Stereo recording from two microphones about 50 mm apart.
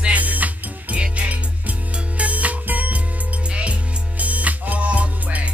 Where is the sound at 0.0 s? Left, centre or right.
Right.